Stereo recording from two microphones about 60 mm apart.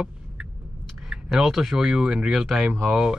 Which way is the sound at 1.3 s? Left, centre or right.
Centre.